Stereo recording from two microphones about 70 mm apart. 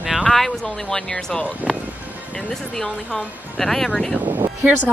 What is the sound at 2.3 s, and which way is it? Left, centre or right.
Speech, centre.